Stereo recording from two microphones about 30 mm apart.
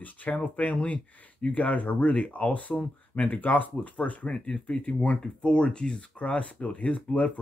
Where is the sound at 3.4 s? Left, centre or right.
Left.